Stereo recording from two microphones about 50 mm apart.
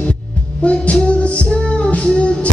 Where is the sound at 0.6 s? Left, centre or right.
Left.